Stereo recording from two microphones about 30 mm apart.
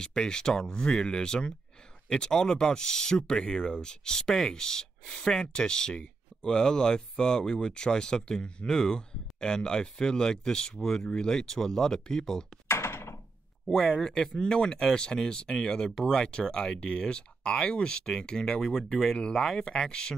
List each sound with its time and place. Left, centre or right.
0.0 s speech: left
13.7 s speech: left